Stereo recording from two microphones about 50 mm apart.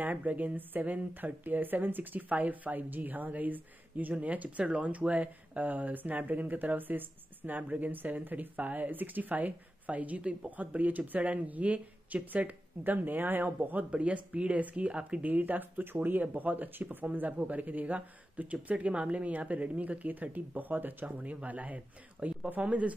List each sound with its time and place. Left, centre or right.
0.0 s a woman's voice: right
13.8 s a woman's voice: right